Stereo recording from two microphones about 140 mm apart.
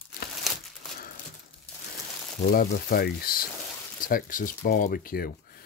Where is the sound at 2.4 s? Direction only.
90° left.